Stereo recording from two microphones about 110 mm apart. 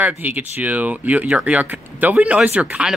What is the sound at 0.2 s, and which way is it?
Speech, 15° right (ahead or behind).